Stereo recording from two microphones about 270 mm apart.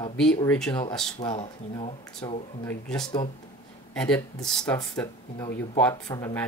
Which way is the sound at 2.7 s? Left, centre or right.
Centre.